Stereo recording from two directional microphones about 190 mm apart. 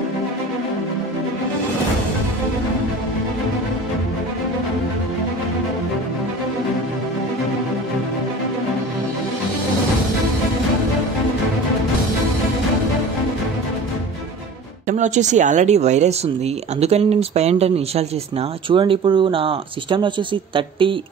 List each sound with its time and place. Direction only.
14.9 s speech: 40° right (ahead or behind)